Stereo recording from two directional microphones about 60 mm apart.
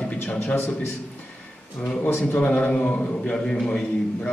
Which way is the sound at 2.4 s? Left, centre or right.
Left.